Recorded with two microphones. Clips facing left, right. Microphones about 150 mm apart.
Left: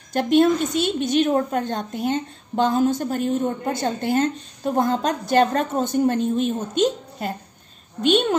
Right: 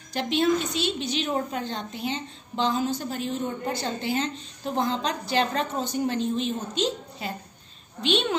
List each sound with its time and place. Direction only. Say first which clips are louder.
0.1 s a woman's voice: left 6 dB; 50° left (ahead or behind)